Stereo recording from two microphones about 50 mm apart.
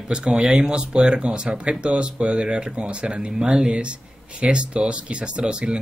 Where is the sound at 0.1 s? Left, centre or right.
Centre.